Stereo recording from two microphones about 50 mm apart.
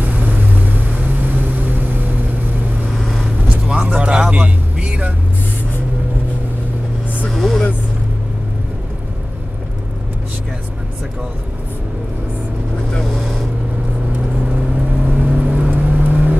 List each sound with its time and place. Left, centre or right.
0.0 s vehicle: right
3.0 s vehicle: centre
3.3 s vehicle: centre
3.7 s vehicle: right
7.2 s vehicle: centre
12.9 s vehicle: centre
14.4 s vehicle: right